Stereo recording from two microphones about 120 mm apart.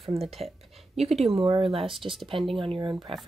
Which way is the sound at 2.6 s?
45° right (ahead or behind).